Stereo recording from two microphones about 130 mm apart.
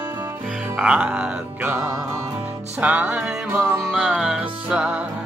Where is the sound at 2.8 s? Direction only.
10° right (ahead or behind).